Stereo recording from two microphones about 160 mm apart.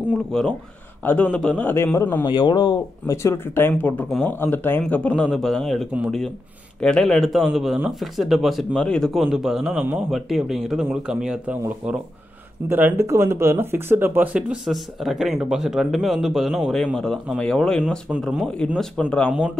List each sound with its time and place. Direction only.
0.3 s a man's voice: 5° left (ahead or behind)
2.2 s a man's voice: 30° left (ahead or behind); by 19.3 s 10° left (ahead or behind)